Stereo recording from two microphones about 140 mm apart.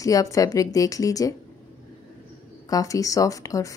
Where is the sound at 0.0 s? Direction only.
25° left (ahead or behind).